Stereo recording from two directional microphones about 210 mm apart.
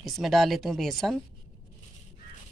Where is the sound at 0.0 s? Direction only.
Centre (ahead or behind).